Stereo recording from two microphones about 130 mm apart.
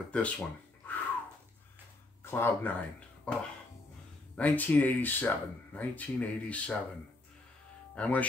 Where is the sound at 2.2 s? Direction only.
20° left (ahead or behind).